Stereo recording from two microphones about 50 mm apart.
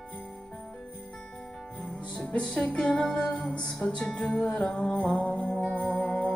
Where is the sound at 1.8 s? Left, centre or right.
Left.